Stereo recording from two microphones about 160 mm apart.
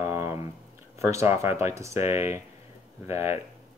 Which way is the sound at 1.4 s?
15° right (ahead or behind).